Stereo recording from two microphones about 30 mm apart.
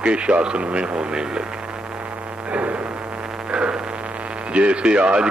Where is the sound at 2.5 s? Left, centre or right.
Right.